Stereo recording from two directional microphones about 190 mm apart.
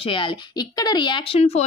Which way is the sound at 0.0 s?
25° left (ahead or behind).